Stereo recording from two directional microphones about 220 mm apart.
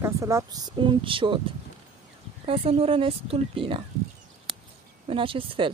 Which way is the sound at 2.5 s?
25° right (ahead or behind).